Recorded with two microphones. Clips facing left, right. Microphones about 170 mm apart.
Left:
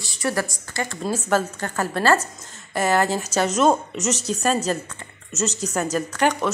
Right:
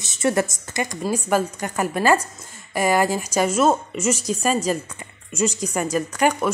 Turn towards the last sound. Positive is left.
turn(degrees=-10)  # may be behind; listen again after turning